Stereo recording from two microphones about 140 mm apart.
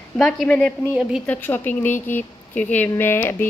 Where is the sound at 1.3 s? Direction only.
10° left (ahead or behind).